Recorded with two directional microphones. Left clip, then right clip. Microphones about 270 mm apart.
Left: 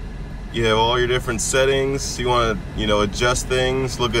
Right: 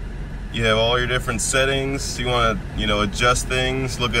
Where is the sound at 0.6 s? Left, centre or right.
Centre.